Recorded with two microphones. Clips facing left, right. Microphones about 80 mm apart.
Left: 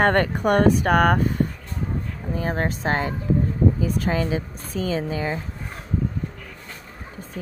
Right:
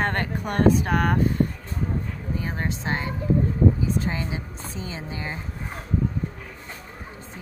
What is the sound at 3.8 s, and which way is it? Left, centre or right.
Speech, left.